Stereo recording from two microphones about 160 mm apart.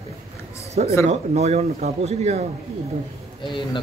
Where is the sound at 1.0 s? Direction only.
40° right (ahead or behind).